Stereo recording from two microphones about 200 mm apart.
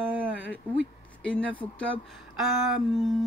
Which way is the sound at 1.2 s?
5° left (ahead or behind).